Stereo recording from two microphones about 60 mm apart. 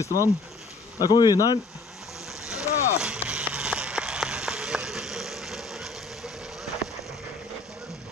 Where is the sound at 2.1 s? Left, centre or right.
Centre.